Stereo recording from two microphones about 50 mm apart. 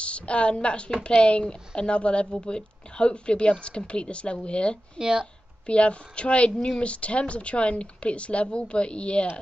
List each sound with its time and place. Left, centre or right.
0.0 s speech: left
4.9 s speech: centre
5.7 s speech: left